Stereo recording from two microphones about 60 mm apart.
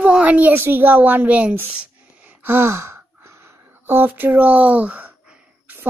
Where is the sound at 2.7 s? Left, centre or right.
Right.